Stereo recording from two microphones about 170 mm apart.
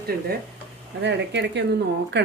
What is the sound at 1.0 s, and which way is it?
Speech, 90° right.